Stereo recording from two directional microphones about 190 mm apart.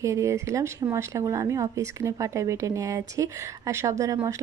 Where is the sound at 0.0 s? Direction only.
15° right (ahead or behind).